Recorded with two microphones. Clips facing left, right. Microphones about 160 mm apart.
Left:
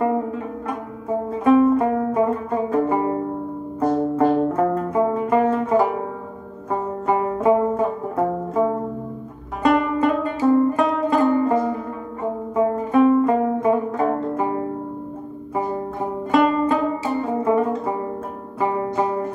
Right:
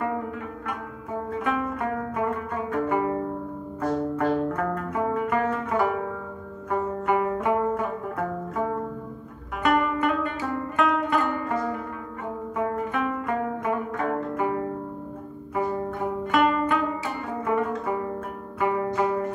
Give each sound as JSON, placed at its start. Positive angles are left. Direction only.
{"t": 0.0, "sound": "music", "side_deg": 30}